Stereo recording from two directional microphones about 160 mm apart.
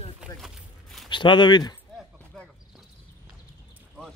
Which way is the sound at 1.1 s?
30° left (ahead or behind).